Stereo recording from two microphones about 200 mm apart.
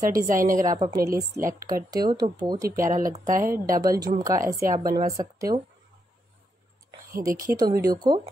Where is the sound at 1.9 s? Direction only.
20° right (ahead or behind).